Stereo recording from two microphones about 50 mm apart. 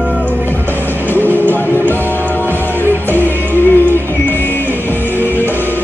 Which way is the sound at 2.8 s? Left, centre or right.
Left.